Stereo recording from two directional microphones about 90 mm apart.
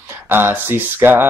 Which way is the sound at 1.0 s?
25° right (ahead or behind).